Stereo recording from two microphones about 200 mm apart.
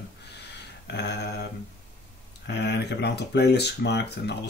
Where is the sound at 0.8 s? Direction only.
60° left (ahead or behind).